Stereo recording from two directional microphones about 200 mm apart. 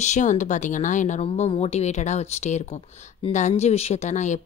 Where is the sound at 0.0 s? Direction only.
35° left (ahead or behind).